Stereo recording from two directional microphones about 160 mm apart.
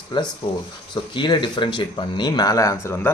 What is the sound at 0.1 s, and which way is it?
Speech, 30° left (ahead or behind).